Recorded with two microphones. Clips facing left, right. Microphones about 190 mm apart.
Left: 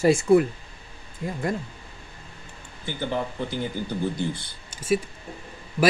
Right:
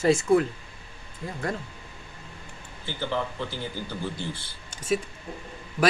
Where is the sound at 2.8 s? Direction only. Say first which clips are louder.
Left 2 dB; 15° left (ahead or behind).